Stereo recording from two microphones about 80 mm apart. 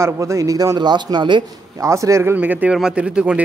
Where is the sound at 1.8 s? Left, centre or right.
Right.